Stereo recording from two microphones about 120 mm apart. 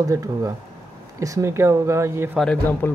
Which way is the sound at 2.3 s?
5° left (ahead or behind).